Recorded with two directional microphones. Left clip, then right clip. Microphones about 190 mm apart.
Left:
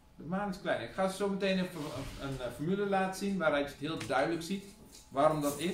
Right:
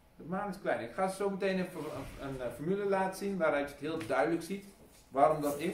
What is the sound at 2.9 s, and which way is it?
A man's voice, 20° right (ahead or behind).